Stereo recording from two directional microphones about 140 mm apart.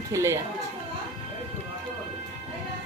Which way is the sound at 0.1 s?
20° right (ahead or behind).